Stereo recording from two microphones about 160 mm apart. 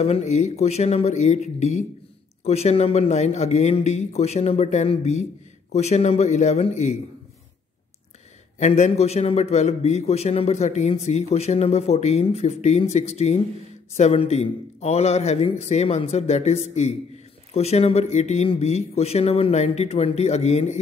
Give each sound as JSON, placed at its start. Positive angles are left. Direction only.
{"t": 0.0, "sound": "a man's voice", "side_deg": 40}
{"t": 8.5, "sound": "a man's voice", "side_deg": 45}